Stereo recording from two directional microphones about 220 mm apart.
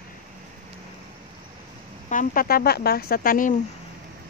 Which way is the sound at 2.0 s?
40° left (ahead or behind).